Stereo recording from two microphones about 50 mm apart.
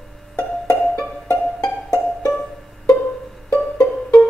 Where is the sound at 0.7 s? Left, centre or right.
Centre.